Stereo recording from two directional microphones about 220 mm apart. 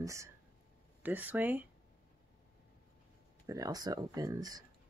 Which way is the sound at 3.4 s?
15° right (ahead or behind).